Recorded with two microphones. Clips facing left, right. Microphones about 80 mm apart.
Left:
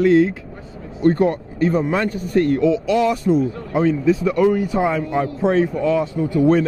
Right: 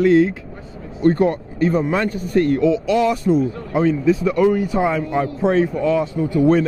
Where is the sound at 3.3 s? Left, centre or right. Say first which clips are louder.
Even; right.